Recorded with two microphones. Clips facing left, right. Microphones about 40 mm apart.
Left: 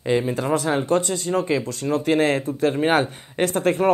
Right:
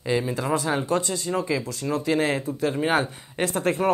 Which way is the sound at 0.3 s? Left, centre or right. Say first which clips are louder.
Left 3 dB; left.